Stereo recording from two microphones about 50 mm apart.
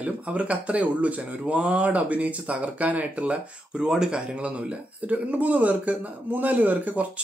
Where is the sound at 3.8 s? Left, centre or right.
Centre; by 7.1 s right.